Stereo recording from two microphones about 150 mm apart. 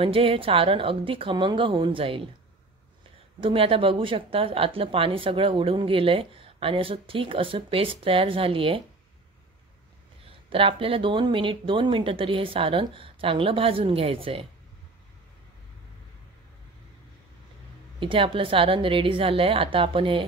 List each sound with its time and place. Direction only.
0.0 s a woman's voice: 35° right (ahead or behind)
3.3 s a woman's voice: 35° right (ahead or behind)
10.3 s a woman's voice: 35° right (ahead or behind)
17.9 s a woman's voice: 35° right (ahead or behind)